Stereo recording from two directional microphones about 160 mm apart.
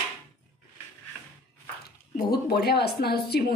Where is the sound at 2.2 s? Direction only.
75° left (ahead or behind).